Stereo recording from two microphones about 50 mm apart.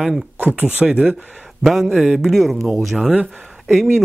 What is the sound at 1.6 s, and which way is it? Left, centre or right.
Speech, centre.